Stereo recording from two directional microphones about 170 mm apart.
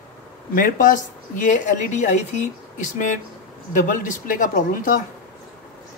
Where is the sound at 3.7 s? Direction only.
50° left (ahead or behind).